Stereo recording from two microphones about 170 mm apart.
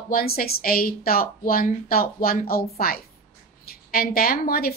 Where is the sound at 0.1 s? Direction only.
60° left (ahead or behind).